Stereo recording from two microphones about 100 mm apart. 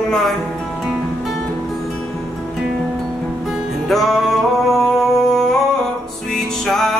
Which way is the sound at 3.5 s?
Centre (ahead or behind).